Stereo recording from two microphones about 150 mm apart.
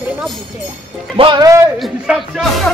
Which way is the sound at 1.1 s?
35° right (ahead or behind).